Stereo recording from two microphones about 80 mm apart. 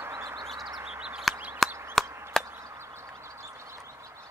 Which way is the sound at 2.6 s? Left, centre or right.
Right.